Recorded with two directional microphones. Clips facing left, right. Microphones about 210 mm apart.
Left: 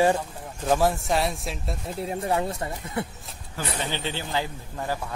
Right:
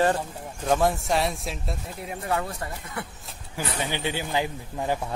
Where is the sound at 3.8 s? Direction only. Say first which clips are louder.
Right 3 dB; 15° right (ahead or behind).